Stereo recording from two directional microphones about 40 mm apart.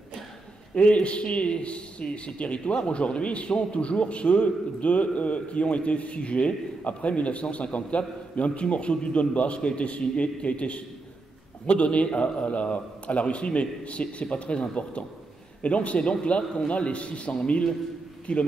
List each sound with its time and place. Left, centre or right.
0.7 s a man's voice: left